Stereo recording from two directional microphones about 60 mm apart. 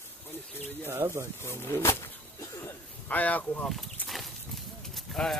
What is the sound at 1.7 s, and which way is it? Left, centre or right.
Speech, left.